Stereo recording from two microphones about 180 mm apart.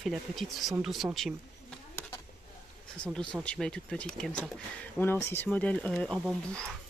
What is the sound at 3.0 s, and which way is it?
Speech, 5° left (ahead or behind).